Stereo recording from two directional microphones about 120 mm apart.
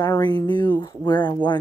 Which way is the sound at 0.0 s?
35° left (ahead or behind).